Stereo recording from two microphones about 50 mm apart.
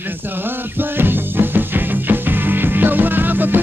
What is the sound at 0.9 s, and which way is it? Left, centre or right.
Music, right.